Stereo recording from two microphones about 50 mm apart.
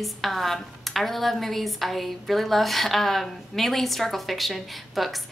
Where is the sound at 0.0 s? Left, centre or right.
Centre.